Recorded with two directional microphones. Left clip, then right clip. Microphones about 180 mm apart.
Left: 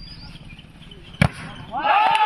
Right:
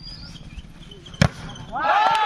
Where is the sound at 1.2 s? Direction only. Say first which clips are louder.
Even; 10° right (ahead or behind).